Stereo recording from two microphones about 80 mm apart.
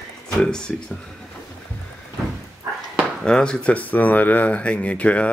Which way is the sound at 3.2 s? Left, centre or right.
Centre.